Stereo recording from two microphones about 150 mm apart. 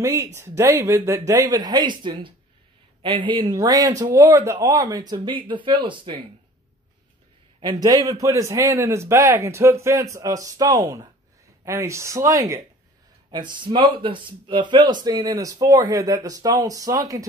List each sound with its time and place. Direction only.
0.0 s speech: 20° right (ahead or behind)
3.4 s speech: 25° right (ahead or behind)
7.6 s speech: 25° right (ahead or behind)